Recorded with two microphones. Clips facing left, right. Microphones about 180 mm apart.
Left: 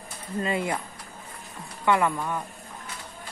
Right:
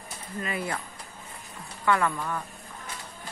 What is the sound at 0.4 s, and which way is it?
Speech, 25° left (ahead or behind).